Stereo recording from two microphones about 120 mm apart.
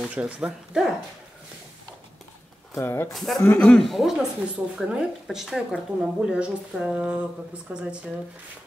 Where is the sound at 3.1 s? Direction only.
Centre (ahead or behind).